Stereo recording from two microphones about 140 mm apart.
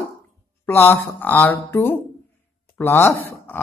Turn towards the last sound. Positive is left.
turn(degrees=15)  # may be behind; listen again after turning